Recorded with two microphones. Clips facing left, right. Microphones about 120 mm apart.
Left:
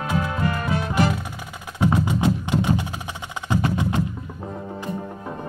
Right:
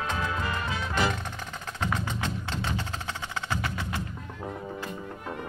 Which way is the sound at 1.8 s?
10° left (ahead or behind).